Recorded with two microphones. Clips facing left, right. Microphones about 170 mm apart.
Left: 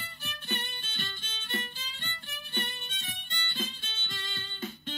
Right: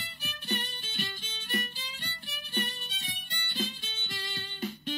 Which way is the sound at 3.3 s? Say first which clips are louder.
Right 3 dB; 15° right (ahead or behind).